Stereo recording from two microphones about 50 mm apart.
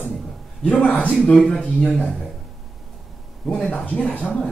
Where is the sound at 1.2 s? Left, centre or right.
Centre.